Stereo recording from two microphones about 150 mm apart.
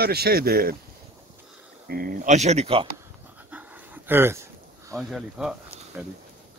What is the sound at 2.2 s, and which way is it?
Speech, 50° right (ahead or behind).